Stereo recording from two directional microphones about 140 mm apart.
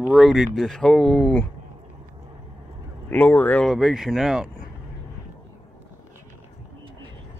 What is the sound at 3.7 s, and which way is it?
Speech, centre (ahead or behind).